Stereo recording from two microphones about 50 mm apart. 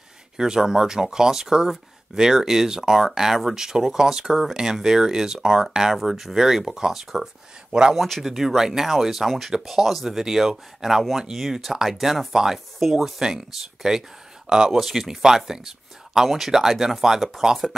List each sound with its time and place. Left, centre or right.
0.4 s speech: centre
8.0 s speech: centre